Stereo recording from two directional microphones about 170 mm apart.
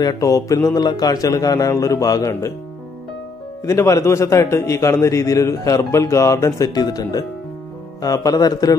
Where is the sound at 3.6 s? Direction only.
15° left (ahead or behind).